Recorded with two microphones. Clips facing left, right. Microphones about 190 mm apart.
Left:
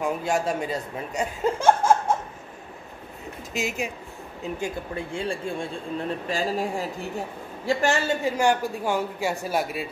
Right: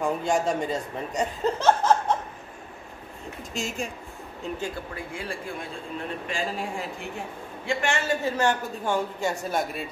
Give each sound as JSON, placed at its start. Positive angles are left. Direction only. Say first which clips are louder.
{"t": 0.0, "sound": "speech", "louder": "even", "side_deg": 5}
{"t": 3.5, "sound": "speech", "louder": "left 3 dB", "side_deg": 5}
{"t": 4.6, "sound": "speech", "louder": "left 3 dB", "side_deg": 20}
{"t": 6.2, "sound": "speech", "louder": "left 4 dB", "side_deg": 40}
{"t": 8.1, "sound": "speech", "louder": "left 2 dB", "side_deg": 15}